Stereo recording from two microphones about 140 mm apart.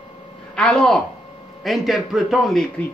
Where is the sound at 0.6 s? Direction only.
5° left (ahead or behind).